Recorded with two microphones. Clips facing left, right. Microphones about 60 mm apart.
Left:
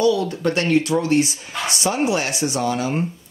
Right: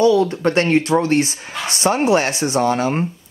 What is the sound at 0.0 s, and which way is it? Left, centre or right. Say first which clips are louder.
Speech: right 4 dB; right.